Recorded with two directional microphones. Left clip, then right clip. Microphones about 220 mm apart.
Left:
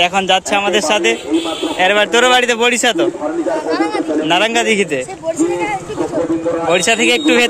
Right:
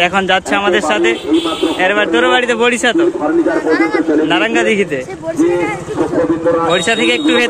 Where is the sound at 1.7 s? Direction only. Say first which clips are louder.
Left 2 dB; 25° left (ahead or behind).